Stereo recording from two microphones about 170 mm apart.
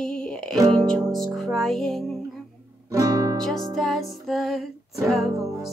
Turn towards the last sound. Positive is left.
turn(degrees=0)  # may be behind; listen again after turning